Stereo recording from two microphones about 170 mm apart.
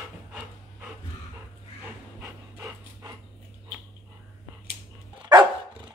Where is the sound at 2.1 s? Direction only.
15° right (ahead or behind).